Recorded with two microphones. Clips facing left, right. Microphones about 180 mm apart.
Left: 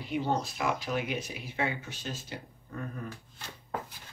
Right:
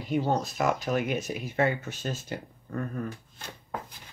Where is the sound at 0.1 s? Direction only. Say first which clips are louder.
Right 4 dB; 45° right (ahead or behind).